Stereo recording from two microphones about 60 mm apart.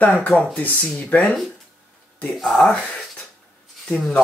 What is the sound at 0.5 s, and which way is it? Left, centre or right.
Speech, left.